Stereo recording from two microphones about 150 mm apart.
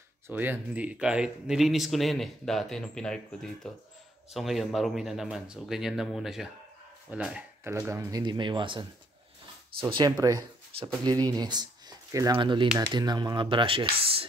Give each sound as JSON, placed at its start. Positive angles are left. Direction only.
{"t": 0.3, "sound": "speech", "side_deg": -10}
{"t": 7.9, "sound": "speech", "side_deg": -20}
{"t": 11.3, "sound": "speech", "side_deg": -25}